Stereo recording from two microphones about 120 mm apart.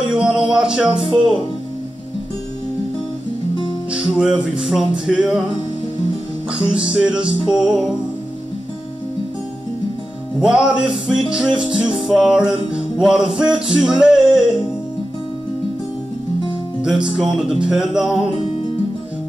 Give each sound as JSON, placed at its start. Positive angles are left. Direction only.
{"t": 0.1, "sound": "speech", "side_deg": -5}
{"t": 1.0, "sound": "speech", "side_deg": -45}
{"t": 3.9, "sound": "music", "side_deg": -5}
{"t": 6.5, "sound": "music", "side_deg": -10}
{"t": 10.4, "sound": "music", "side_deg": -5}
{"t": 16.8, "sound": "music", "side_deg": -5}